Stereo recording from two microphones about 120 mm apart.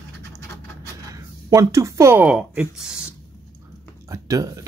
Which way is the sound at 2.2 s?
5° right (ahead or behind).